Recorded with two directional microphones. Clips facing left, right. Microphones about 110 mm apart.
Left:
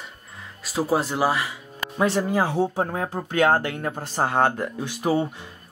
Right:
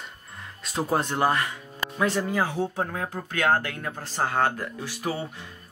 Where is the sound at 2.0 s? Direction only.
30° left (ahead or behind).